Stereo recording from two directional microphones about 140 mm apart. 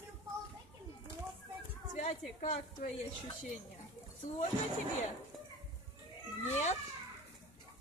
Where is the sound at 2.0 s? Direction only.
55° left (ahead or behind).